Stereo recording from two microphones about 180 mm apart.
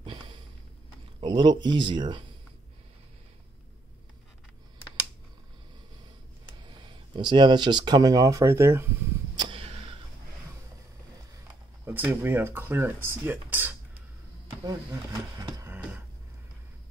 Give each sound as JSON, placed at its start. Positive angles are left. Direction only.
{"t": 0.0, "sound": "sniff", "side_deg": -25}
{"t": 1.2, "sound": "speech", "side_deg": -25}
{"t": 6.6, "sound": "speech", "side_deg": -25}
{"t": 9.3, "sound": "a sound", "side_deg": -25}
{"t": 11.8, "sound": "speech", "side_deg": -10}